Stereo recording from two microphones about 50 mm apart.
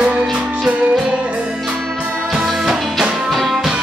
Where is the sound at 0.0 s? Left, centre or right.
Right.